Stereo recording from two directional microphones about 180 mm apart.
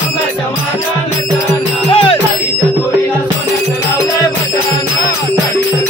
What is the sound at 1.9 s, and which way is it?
Music, 30° left (ahead or behind).